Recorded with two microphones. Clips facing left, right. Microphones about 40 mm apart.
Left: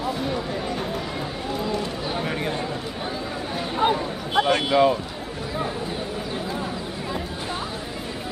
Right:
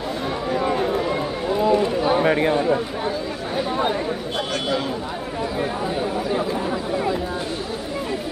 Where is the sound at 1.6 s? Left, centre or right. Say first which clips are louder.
Right 9 dB; right.